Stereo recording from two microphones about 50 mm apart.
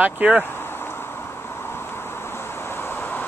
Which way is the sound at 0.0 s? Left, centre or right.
Right.